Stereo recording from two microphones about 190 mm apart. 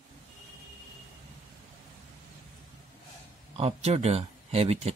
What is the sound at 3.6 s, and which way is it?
Speech, 30° right (ahead or behind).